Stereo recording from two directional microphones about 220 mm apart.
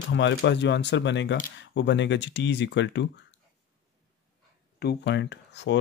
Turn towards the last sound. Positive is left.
turn(degrees=50)  # may be behind; listen again after turning